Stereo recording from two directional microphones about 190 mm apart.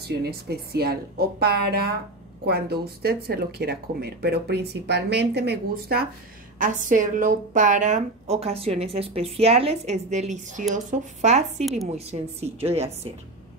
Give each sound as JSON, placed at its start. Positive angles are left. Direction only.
{"t": 0.2, "sound": "speech", "side_deg": -55}
{"t": 6.6, "sound": "a woman's voice", "side_deg": -40}